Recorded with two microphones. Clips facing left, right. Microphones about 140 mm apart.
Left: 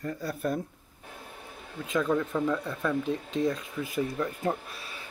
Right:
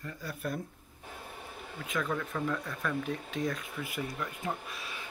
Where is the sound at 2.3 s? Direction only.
10° left (ahead or behind).